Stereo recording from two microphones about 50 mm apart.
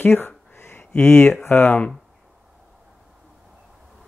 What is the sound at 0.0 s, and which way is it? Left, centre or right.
Speech, left.